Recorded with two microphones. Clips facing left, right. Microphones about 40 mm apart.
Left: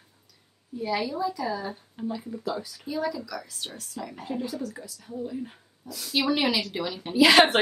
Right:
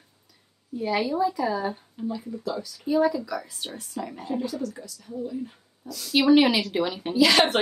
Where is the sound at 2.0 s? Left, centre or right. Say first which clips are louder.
Right 1 dB; centre.